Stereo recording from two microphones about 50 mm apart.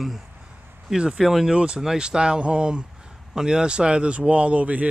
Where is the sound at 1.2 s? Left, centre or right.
Centre.